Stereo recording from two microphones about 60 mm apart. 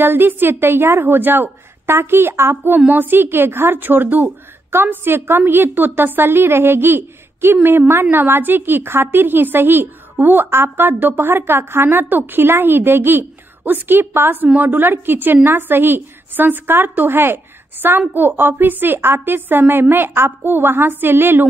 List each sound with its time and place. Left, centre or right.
0.0 s a woman's voice: right